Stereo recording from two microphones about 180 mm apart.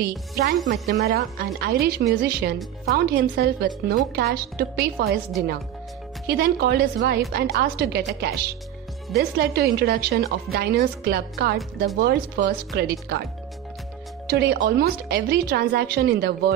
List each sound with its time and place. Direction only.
0.0 s speech: 60° right (ahead or behind)
6.2 s speech: 60° right (ahead or behind)
14.3 s speech: 60° right (ahead or behind)